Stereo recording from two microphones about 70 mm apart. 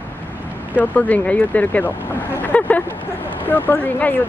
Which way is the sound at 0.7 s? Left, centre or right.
Left.